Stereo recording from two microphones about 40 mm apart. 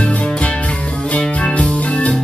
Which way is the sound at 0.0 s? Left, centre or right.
Left.